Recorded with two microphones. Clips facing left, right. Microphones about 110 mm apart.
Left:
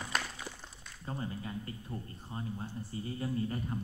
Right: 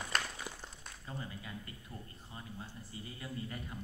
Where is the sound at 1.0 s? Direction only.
35° left (ahead or behind).